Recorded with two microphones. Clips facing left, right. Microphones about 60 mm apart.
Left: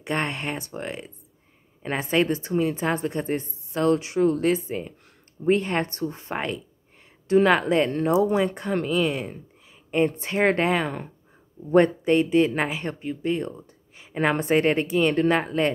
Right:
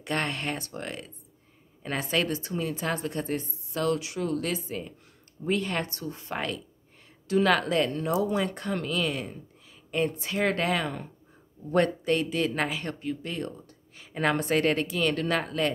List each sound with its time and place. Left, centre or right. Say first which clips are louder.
0.0 s a woman's voice: left 3 dB; left
9.8 s a woman's voice: left 5 dB; left